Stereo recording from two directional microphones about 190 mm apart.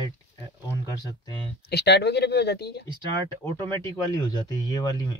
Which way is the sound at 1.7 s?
60° left (ahead or behind).